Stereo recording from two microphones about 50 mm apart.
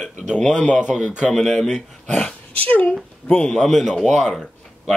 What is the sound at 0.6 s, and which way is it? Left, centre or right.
Speech, left.